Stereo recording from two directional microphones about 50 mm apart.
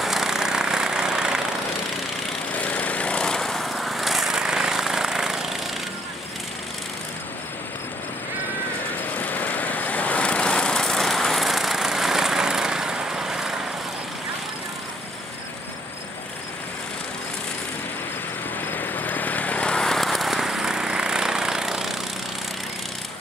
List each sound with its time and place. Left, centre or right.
0.0 s a sound: centre
2.5 s lawn mower: left
3.3 s vehicle: centre
9.2 s vehicle: left; by 13.6 s centre
18.7 s vehicle: left
19.8 s a sound: centre